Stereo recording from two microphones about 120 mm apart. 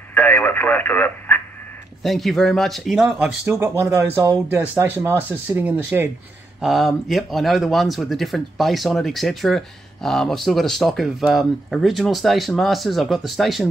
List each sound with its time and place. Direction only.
0.1 s radio: 15° left (ahead or behind)
2.0 s speech: centre (ahead or behind)
3.4 s speech: 20° right (ahead or behind)
6.6 s speech: centre (ahead or behind)